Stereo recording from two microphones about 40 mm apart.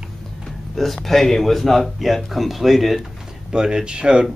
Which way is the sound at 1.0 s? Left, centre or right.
Centre.